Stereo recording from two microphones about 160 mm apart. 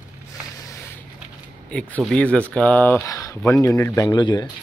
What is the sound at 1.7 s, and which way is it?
A man's voice, 5° left (ahead or behind).